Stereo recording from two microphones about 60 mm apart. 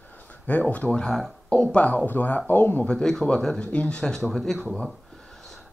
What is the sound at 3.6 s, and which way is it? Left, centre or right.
Speech, left.